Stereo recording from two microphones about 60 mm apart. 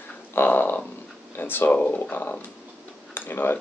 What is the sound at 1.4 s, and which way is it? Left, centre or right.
Speech, left.